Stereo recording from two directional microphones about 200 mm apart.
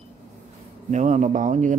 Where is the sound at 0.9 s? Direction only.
35° right (ahead or behind).